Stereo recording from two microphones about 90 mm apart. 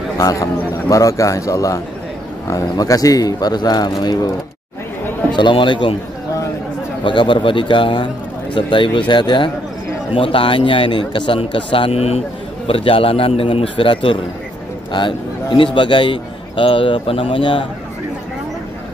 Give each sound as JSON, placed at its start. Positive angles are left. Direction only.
{"t": 0.2, "sound": "a man's voice", "side_deg": 40}
{"t": 5.3, "sound": "speech", "side_deg": 65}
{"t": 7.1, "sound": "a man's voice", "side_deg": 65}
{"t": 10.1, "sound": "a man's voice", "side_deg": 80}
{"t": 14.9, "sound": "a man's voice", "side_deg": 60}